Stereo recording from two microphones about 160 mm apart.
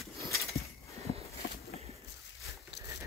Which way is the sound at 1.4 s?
90° left.